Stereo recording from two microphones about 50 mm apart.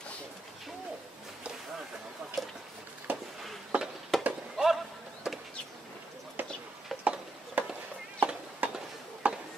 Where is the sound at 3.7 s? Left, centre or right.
Right.